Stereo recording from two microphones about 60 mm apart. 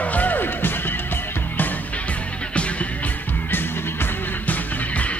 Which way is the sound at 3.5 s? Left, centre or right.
Left.